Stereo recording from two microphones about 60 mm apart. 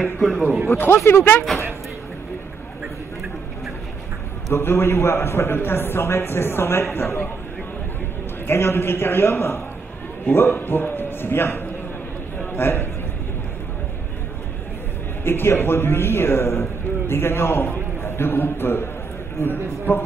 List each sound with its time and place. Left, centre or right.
0.0 s a man's voice: centre
0.7 s a man's voice: left
4.5 s a man's voice: left
8.5 s a man's voice: left
15.2 s a man's voice: left